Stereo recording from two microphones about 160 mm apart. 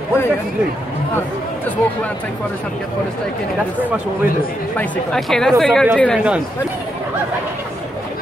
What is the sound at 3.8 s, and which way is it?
Speech, 10° right (ahead or behind).